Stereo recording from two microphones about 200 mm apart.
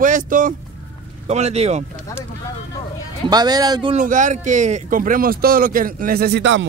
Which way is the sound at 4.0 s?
40° right (ahead or behind).